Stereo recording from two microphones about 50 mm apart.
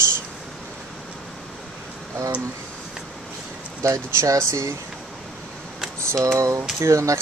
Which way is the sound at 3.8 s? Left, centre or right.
Right.